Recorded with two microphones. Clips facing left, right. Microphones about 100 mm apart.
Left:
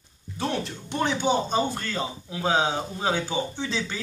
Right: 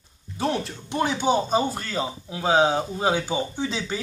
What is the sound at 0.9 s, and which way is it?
Speech, 10° right (ahead or behind).